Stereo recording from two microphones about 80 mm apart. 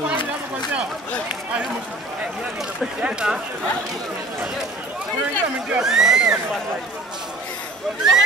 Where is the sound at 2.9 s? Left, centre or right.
Centre.